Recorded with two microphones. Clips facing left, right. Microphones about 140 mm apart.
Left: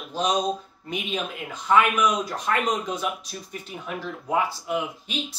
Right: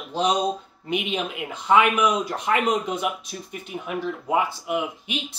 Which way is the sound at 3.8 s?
15° right (ahead or behind).